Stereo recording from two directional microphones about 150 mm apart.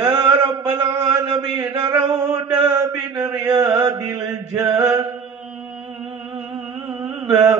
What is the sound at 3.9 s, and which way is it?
Speech, 25° right (ahead or behind).